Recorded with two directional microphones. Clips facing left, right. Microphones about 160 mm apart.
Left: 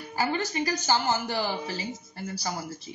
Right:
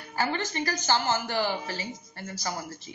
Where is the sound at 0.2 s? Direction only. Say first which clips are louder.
Left 1 dB; 10° left (ahead or behind).